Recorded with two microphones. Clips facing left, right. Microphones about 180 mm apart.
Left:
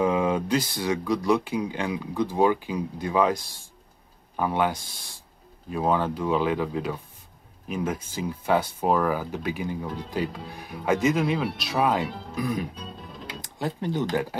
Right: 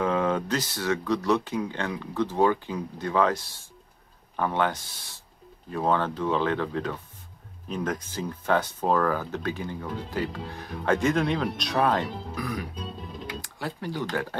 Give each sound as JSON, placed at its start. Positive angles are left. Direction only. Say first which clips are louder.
{"t": 0.0, "sound": "speech", "louder": "left 2 dB", "side_deg": 10}